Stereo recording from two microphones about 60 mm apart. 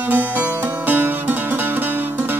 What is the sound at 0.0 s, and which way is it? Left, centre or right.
Music, right.